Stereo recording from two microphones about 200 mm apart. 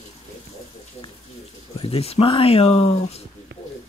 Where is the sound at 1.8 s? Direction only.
30° left (ahead or behind).